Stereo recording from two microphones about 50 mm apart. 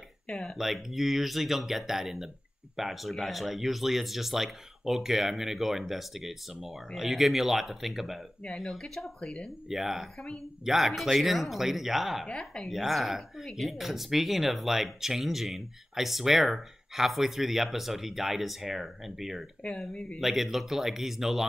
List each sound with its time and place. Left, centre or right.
0.3 s speech: centre
0.6 s speech: centre
9.2 s speech: centre
9.7 s speech: centre
12.3 s speech: centre
12.6 s speech: centre